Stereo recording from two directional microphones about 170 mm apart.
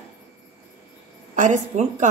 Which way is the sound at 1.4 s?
45° right (ahead or behind).